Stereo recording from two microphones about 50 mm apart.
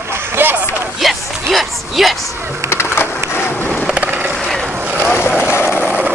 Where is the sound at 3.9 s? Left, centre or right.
Right.